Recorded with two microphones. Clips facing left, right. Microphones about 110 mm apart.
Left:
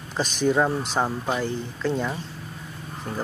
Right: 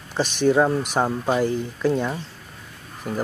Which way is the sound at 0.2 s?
Centre (ahead or behind).